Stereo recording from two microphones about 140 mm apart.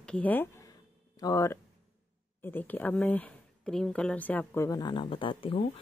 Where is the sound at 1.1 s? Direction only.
25° left (ahead or behind).